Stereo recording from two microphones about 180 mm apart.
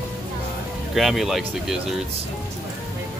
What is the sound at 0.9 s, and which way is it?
Speech, centre (ahead or behind).